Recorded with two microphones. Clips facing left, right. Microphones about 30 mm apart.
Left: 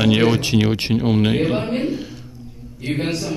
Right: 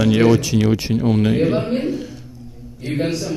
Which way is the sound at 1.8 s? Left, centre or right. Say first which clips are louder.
Even; centre.